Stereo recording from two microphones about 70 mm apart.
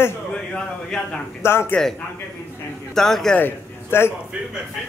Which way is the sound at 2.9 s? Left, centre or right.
Centre.